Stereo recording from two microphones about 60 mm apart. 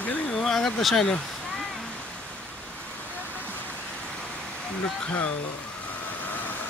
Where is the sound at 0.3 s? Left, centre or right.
Centre.